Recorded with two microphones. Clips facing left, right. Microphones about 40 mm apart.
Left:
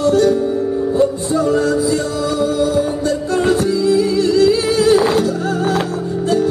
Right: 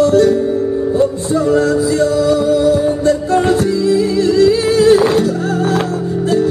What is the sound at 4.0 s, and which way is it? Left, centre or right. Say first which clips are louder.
Music: right 2 dB; centre.